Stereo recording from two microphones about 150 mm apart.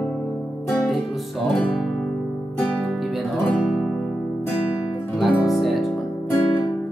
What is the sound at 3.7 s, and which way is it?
Guitar, centre (ahead or behind).